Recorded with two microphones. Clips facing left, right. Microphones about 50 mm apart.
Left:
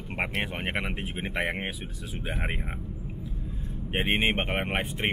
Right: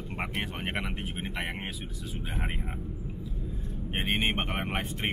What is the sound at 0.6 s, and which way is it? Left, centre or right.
Speech, centre.